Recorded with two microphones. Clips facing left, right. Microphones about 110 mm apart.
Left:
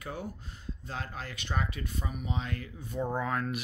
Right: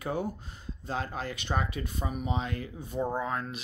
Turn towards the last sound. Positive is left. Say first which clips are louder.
# left 1 dB
turn(degrees=-25)  # may be behind; listen again after turning